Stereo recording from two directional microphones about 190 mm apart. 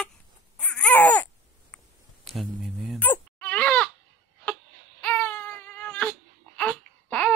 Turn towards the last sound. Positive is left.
turn(degrees=10)  # may be behind; listen again after turning